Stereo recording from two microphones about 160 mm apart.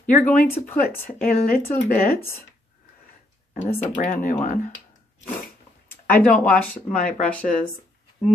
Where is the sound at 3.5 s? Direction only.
50° left (ahead or behind).